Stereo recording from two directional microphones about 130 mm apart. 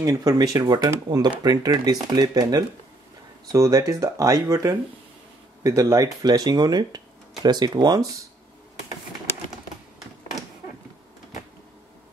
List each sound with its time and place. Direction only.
0.0 s speech: 30° right (ahead or behind)